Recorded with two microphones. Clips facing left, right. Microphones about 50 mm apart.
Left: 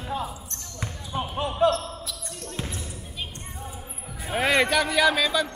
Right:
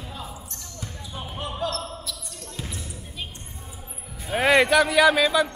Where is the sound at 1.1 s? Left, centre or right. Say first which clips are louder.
Left 8 dB; left.